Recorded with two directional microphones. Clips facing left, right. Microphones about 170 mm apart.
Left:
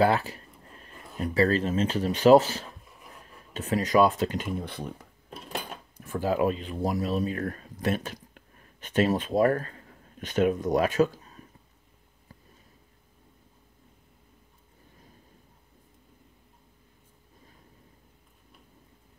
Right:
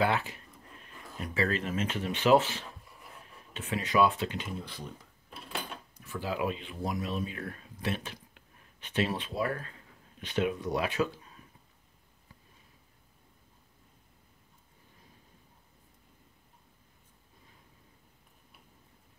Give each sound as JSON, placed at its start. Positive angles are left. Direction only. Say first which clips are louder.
{"t": 0.0, "sound": "speech", "louder": "left 6 dB", "side_deg": 35}